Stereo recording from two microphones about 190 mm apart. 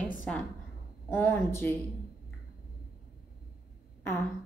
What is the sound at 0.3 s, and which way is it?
A woman's voice, 5° left (ahead or behind).